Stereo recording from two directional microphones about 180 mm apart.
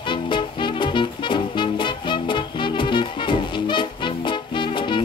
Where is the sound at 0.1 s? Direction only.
25° left (ahead or behind).